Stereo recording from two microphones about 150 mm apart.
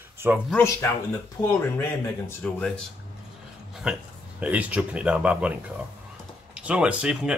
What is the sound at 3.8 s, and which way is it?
Speech, 5° right (ahead or behind).